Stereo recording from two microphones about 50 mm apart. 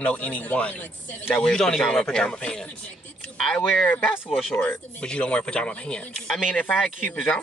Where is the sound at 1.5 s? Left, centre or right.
Centre.